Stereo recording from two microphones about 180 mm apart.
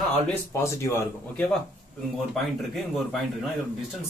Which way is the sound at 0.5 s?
15° left (ahead or behind).